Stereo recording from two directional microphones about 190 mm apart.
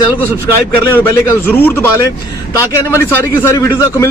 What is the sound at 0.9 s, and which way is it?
A man's voice, 10° left (ahead or behind).